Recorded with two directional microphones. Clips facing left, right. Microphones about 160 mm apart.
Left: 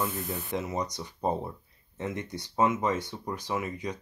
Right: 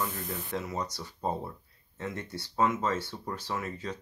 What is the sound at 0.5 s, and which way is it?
Speech, 20° left (ahead or behind).